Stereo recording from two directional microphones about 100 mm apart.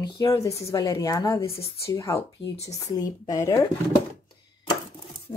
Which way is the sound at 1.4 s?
65° left (ahead or behind).